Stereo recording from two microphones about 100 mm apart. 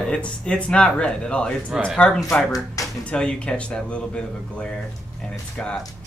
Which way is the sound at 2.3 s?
10° left (ahead or behind).